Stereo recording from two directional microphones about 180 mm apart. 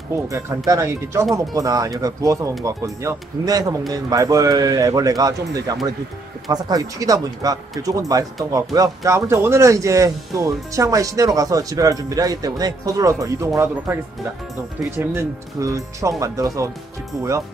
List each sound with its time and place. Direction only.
0.7 s speech: 15° right (ahead or behind)
15.0 s speech: 15° right (ahead or behind)